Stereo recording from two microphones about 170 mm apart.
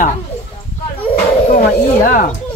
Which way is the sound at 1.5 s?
50° left (ahead or behind).